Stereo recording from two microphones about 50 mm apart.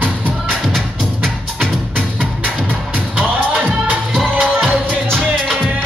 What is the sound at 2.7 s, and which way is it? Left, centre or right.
Music, right.